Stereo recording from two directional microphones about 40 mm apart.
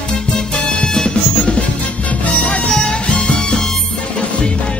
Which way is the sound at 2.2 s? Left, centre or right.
Left.